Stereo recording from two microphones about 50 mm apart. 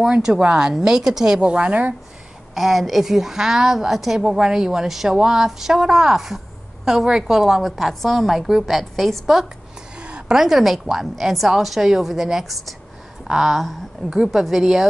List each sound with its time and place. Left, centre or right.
0.1 s speech: centre
2.5 s a woman's voice: centre
9.9 s a sound: right
10.3 s a woman's voice: centre